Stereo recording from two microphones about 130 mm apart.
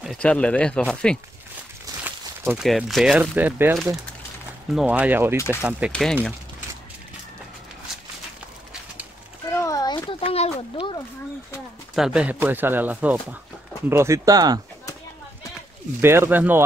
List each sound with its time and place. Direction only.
0.2 s speech: 10° left (ahead or behind)
2.0 s a sound: 15° right (ahead or behind)
2.6 s speech: centre (ahead or behind)
3.2 s speech: 15° right (ahead or behind)
5.9 s speech: 5° left (ahead or behind)
9.5 s a sound: 25° left (ahead or behind); by 11.0 s 45° left (ahead or behind)
11.9 s speech: 5° right (ahead or behind); by 14.6 s 30° right (ahead or behind)
16.0 s speech: 20° right (ahead or behind)